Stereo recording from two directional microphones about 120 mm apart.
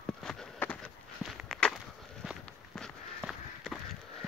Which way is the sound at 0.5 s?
10° left (ahead or behind).